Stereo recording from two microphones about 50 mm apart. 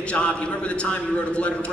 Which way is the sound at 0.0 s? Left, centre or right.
Left.